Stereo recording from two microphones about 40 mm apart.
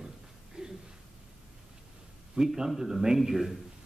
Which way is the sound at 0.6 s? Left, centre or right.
Right.